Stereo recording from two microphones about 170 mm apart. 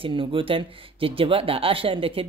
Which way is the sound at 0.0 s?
30° right (ahead or behind).